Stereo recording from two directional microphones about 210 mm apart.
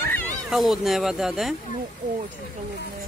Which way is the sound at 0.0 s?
10° left (ahead or behind).